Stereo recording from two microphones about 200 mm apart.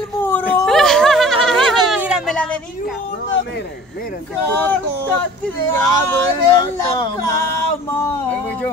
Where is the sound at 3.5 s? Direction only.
45° left (ahead or behind).